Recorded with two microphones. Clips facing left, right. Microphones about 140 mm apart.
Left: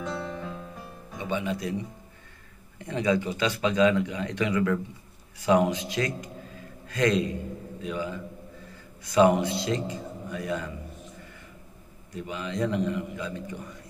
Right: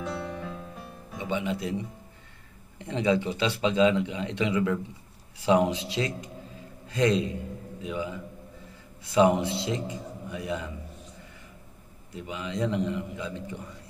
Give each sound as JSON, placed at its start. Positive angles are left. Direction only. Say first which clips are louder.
{"t": 0.0, "sound": "music", "louder": "even", "side_deg": -5}
{"t": 1.1, "sound": "speech", "louder": "even", "side_deg": -20}
{"t": 2.8, "sound": "a man's voice", "louder": "even", "side_deg": -25}
{"t": 12.1, "sound": "speech", "louder": "left 1 dB", "side_deg": -15}